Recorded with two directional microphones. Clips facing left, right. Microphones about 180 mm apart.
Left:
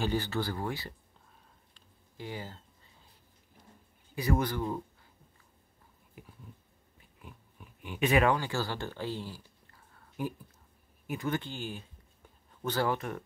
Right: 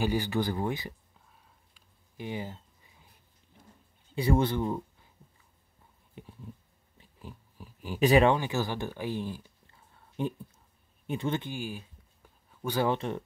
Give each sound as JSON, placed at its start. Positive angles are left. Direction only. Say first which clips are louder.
{"t": 0.0, "sound": "speech", "louder": "right 3 dB", "side_deg": -10}
{"t": 1.7, "sound": "a sound", "louder": "left 3 dB", "side_deg": -20}
{"t": 4.1, "sound": "speech", "louder": "right 4 dB", "side_deg": -25}
{"t": 6.2, "sound": "speech", "louder": "right 4 dB", "side_deg": -25}
{"t": 7.0, "sound": "a sound", "louder": "right 5 dB", "side_deg": -30}
{"t": 11.1, "sound": "speech", "louder": "right 2 dB", "side_deg": -25}
{"t": 11.5, "sound": "speech", "louder": "right 3 dB", "side_deg": -10}